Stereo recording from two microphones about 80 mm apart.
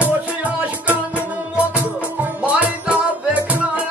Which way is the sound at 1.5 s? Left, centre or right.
Centre.